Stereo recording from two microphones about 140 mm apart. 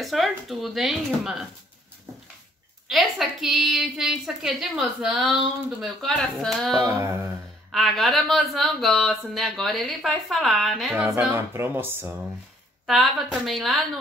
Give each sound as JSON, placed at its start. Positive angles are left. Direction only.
{"t": 0.0, "sound": "a woman's voice", "side_deg": 0}
{"t": 2.9, "sound": "a woman's voice", "side_deg": 0}
{"t": 6.8, "sound": "a sound", "side_deg": -20}
{"t": 7.7, "sound": "a woman's voice", "side_deg": 0}
{"t": 11.1, "sound": "speech", "side_deg": -15}
{"t": 12.8, "sound": "a woman's voice", "side_deg": 0}